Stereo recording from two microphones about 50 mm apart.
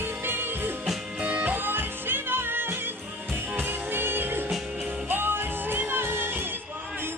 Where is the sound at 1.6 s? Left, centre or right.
Right.